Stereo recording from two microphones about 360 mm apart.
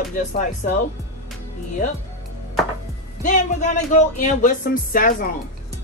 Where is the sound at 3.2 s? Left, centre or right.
Left.